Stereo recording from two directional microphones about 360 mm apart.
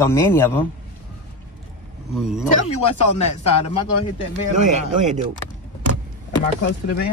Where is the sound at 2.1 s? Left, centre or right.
Centre.